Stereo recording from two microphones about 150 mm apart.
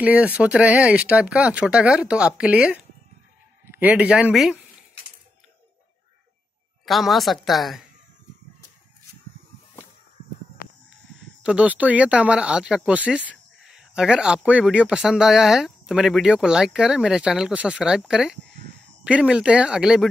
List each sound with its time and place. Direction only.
0.0 s speech: 10° right (ahead or behind)
6.9 s speech: centre (ahead or behind)
10.6 s a sound: 70° left (ahead or behind)
11.4 s speech: 10° right (ahead or behind)